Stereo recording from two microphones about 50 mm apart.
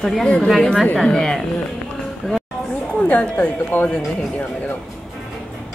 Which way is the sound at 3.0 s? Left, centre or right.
Left.